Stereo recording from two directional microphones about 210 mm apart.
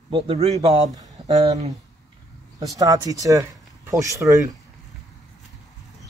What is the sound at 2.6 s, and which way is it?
Speech, 15° right (ahead or behind).